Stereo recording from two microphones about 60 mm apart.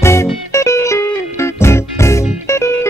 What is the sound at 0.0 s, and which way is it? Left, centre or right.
Music, left.